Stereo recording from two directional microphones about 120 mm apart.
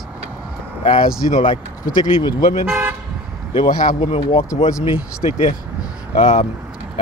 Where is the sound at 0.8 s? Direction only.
60° left (ahead or behind).